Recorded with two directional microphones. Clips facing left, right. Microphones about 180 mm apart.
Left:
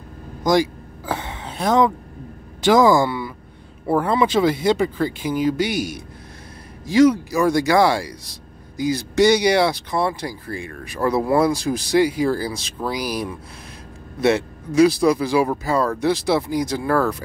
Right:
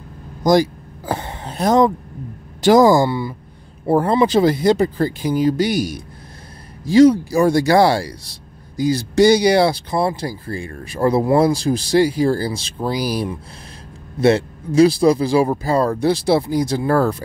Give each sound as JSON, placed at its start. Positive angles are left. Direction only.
{"t": 0.4, "sound": "vehicle", "side_deg": -40}
{"t": 2.6, "sound": "speech", "side_deg": -40}